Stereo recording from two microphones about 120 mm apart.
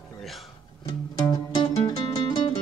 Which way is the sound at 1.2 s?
35° left (ahead or behind).